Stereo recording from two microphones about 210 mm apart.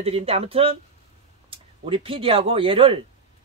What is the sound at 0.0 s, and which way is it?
Speech, 30° right (ahead or behind).